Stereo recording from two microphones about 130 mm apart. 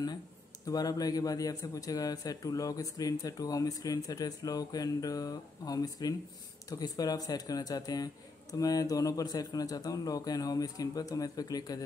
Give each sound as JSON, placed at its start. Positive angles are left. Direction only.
{"t": 0.7, "sound": "a man's voice", "side_deg": 30}